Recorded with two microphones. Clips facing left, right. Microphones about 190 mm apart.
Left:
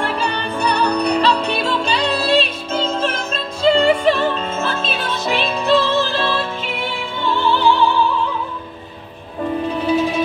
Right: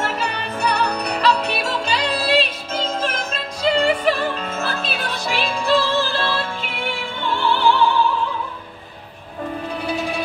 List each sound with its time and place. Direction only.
0.0 s music: 35° left (ahead or behind)